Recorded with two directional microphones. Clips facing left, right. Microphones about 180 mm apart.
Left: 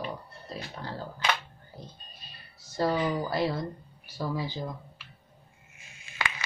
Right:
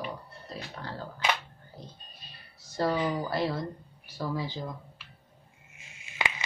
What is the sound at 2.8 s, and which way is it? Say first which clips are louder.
Speech: left 1 dB; 5° left (ahead or behind).